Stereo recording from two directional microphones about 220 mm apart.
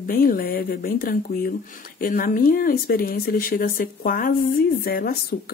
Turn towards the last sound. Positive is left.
turn(degrees=40)  # may be behind; listen again after turning